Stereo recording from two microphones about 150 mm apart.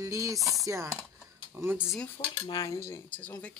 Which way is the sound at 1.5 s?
15° right (ahead or behind).